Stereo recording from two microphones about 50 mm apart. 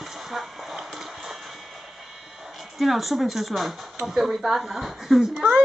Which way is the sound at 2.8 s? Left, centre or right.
Centre.